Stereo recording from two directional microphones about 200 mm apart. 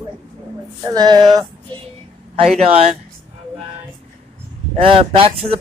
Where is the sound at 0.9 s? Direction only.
20° right (ahead or behind).